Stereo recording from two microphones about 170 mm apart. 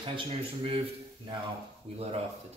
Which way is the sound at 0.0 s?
30° right (ahead or behind).